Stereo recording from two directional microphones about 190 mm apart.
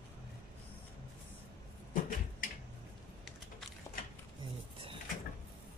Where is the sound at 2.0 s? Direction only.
45° left (ahead or behind).